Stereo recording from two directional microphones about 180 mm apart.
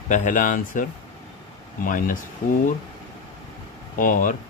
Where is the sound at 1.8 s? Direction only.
45° left (ahead or behind).